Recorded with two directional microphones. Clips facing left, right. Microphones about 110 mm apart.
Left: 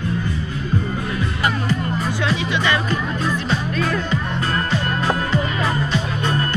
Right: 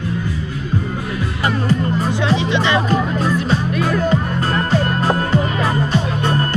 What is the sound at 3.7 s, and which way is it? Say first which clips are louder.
Music: right 3 dB; 15° right (ahead or behind).